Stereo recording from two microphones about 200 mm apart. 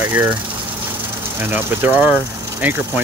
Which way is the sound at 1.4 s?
10° right (ahead or behind).